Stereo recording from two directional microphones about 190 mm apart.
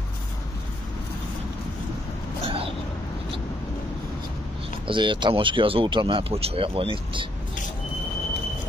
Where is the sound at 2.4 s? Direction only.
30° right (ahead or behind).